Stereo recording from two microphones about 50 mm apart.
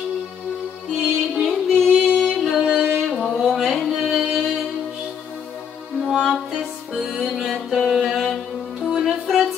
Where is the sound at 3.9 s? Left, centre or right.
Centre.